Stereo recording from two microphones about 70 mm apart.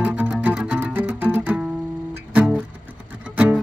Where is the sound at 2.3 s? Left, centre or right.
Centre.